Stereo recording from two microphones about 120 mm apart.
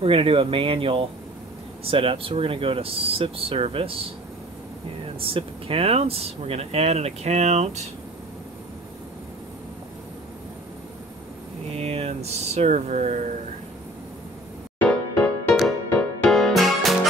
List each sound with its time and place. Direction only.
0.0 s speech: 50° right (ahead or behind)
5.2 s speech: 50° right (ahead or behind); by 7.8 s 65° right (ahead or behind)
11.7 s speech: 60° right (ahead or behind); by 13.4 s 90° right
14.8 s music: 15° left (ahead or behind)